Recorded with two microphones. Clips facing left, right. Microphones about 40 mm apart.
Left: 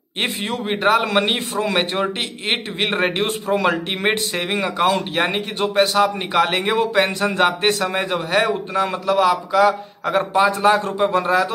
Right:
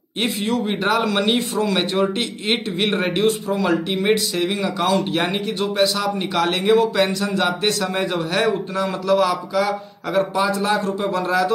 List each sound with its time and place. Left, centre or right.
0.7 s a man's voice: centre
1.0 s a man's voice: left
5.1 s a man's voice: left
7.8 s a man's voice: centre
9.0 s a man's voice: centre
9.3 s a man's voice: left